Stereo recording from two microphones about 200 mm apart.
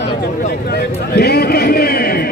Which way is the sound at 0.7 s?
50° left (ahead or behind).